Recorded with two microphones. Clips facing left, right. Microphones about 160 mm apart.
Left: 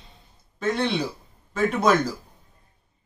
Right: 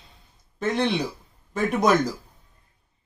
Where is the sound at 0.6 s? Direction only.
15° right (ahead or behind).